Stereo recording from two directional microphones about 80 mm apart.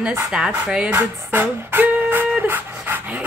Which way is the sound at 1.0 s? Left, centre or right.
Right.